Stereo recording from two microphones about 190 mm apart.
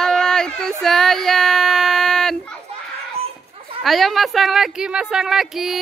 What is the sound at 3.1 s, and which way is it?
Children playing, 30° right (ahead or behind).